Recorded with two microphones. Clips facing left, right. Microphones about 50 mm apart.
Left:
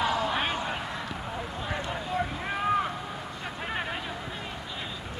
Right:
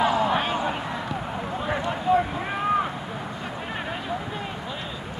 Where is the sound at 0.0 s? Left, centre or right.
Centre.